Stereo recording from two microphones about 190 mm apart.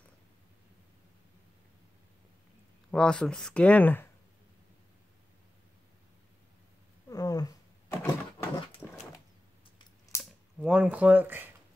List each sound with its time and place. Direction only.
2.9 s speech: 5° left (ahead or behind)
7.1 s a sound: 20° left (ahead or behind)
8.8 s dog: 5° left (ahead or behind)
10.1 s coin: 15° left (ahead or behind)
10.6 s speech: 5° right (ahead or behind)